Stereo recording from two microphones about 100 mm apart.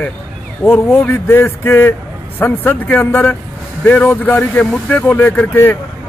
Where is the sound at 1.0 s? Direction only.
15° left (ahead or behind).